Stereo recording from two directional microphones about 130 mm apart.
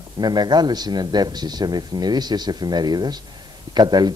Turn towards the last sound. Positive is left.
turn(degrees=-35)  # may be behind; listen again after turning